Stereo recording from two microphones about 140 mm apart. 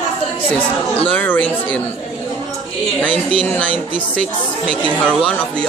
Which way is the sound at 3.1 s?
40° right (ahead or behind).